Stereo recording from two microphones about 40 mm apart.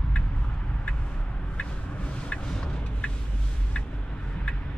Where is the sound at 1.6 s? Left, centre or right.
Left.